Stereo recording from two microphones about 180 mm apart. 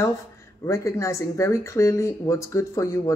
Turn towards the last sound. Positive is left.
turn(degrees=15)  # may be behind; listen again after turning